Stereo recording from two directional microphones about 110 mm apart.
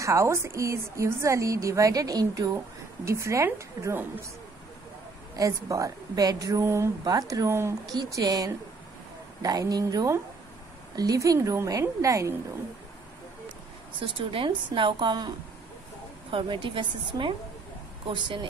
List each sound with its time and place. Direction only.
0.0 s a woman's voice: 25° right (ahead or behind)
5.3 s a woman's voice: 30° right (ahead or behind)
7.8 s a woman's voice: 35° right (ahead or behind)
13.9 s a woman's voice: 50° right (ahead or behind)
16.3 s a woman's voice: 50° right (ahead or behind)